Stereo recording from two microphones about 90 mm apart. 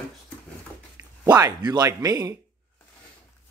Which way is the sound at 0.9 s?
40° right (ahead or behind).